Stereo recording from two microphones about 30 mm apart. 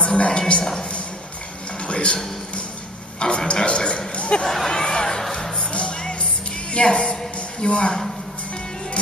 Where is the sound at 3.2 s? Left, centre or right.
Left.